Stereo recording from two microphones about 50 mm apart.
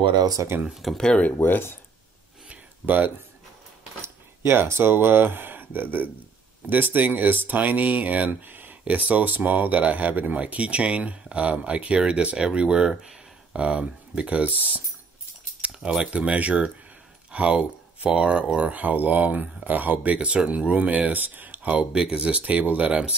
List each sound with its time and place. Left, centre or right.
0.4 s speech: right
0.9 s speech: centre
2.8 s speech: centre
4.0 s a sound: right
4.6 s speech: right
16.1 s speech: right
21.9 s speech: centre
22.4 s speech: right